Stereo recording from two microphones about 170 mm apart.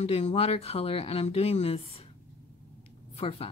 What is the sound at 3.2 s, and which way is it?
Speech, 35° left (ahead or behind).